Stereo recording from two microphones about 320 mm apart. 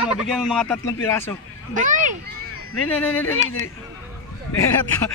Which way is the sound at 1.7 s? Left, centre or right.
Right.